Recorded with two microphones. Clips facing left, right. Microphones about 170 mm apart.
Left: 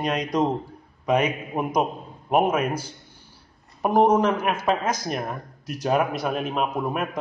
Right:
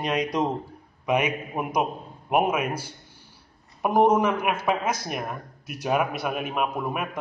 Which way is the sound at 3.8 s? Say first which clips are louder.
Left 1 dB; 5° right (ahead or behind).